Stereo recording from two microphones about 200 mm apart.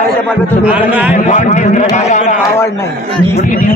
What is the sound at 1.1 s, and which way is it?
A man's voice, 35° left (ahead or behind).